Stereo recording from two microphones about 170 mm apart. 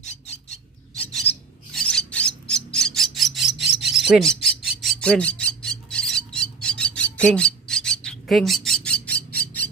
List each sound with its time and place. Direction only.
0.0 s a sound: 40° left (ahead or behind)
0.9 s filing: 5° left (ahead or behind)
3.5 s cricket: 75° right (ahead or behind)
3.9 s bird: centre (ahead or behind)
4.8 s a sound: 5° left (ahead or behind)
7.2 s bird: 5° left (ahead or behind)